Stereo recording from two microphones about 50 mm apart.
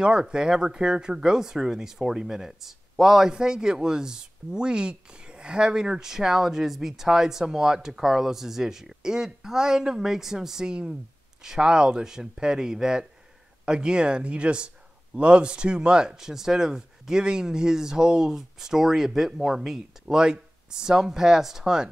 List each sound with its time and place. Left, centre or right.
0.0 s speech: centre